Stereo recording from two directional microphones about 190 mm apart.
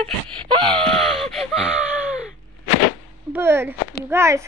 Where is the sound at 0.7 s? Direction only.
Centre (ahead or behind).